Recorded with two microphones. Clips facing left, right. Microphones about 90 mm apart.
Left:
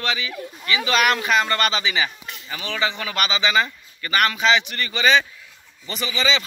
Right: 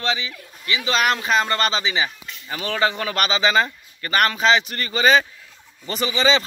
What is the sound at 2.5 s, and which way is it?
Speech, 40° right (ahead or behind).